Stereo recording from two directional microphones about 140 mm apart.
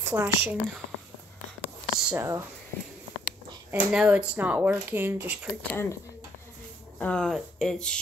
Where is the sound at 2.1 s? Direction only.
20° right (ahead or behind).